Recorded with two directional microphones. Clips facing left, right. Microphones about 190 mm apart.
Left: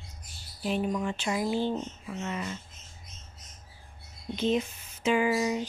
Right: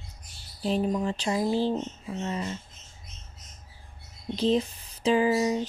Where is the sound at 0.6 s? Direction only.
35° right (ahead or behind).